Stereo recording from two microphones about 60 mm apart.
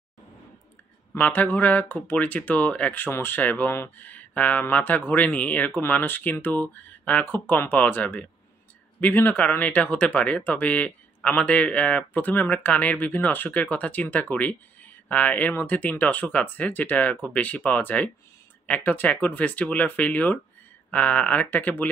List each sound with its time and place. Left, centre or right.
1.1 s speech: left
2.9 s speech: left